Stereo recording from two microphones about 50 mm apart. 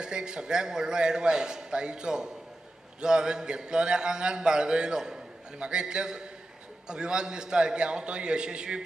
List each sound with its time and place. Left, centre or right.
0.0 s speech: centre